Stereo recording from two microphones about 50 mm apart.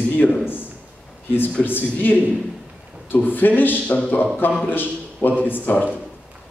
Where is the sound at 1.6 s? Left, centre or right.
Left.